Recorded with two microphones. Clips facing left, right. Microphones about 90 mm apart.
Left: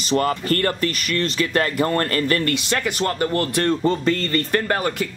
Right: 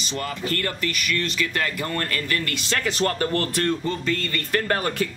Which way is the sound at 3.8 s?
40° left (ahead or behind).